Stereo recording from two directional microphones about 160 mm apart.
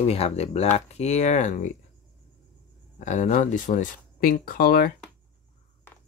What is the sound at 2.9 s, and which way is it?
Speech, 50° left (ahead or behind).